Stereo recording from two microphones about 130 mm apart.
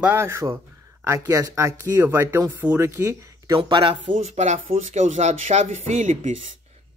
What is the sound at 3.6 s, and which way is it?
Speech, 40° right (ahead or behind).